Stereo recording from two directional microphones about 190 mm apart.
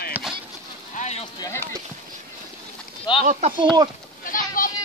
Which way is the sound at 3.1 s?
25° left (ahead or behind).